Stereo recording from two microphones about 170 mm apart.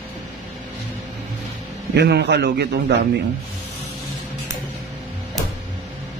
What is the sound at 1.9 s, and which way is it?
A man's voice, 80° right.